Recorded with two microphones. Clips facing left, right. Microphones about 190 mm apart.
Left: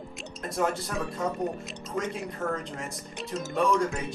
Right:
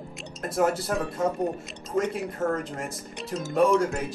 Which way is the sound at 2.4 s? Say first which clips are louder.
Right 4 dB; 40° right (ahead or behind).